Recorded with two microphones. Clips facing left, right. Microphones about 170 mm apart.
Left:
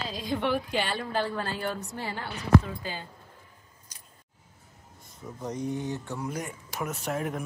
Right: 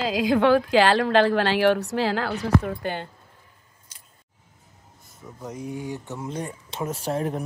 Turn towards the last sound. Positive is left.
turn(degrees=-30)  # may be behind; listen again after turning